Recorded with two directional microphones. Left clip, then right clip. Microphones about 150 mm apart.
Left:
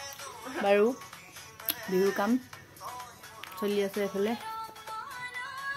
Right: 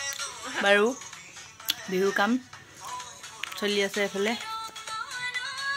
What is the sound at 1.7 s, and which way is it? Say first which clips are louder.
Music: right 7 dB; 10° left (ahead or behind).